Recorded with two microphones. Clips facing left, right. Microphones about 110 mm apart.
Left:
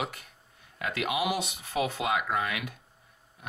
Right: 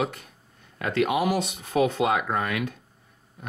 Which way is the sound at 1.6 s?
50° right (ahead or behind).